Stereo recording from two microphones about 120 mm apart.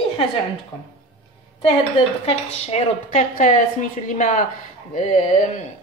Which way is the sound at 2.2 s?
60° left (ahead or behind).